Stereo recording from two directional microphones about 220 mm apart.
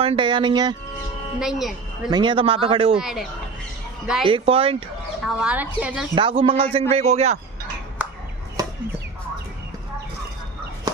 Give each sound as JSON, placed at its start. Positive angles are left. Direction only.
{"t": 0.0, "sound": "a man's voice", "side_deg": -20}
{"t": 1.4, "sound": "speech", "side_deg": 0}
{"t": 2.0, "sound": "a man's voice", "side_deg": -20}
{"t": 3.0, "sound": "speech", "side_deg": 0}
{"t": 4.3, "sound": "a man's voice", "side_deg": -25}
{"t": 5.2, "sound": "speech", "side_deg": -5}
{"t": 6.1, "sound": "a man's voice", "side_deg": -25}